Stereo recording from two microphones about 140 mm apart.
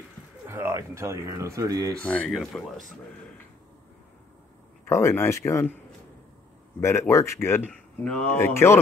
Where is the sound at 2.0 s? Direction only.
10° left (ahead or behind).